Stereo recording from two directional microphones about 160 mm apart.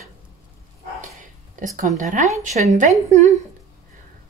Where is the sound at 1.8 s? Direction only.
50° right (ahead or behind).